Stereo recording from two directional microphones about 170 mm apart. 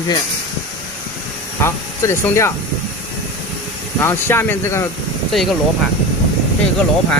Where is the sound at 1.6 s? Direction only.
15° left (ahead or behind).